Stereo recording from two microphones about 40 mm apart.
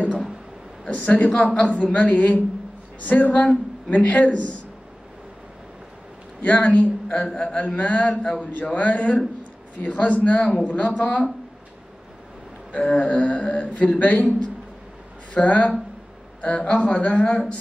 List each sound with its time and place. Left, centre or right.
0.8 s speech: left
1.9 s speech: left
6.4 s speech: left
12.8 s speech: left
15.4 s speech: left
16.3 s speech: left